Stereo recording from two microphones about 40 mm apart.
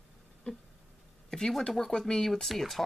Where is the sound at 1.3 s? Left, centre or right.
Centre.